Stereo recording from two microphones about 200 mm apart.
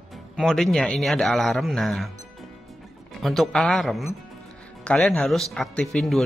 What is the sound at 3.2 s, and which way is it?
Speech, centre (ahead or behind).